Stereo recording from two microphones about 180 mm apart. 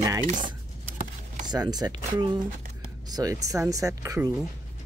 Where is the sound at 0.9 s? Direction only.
45° right (ahead or behind).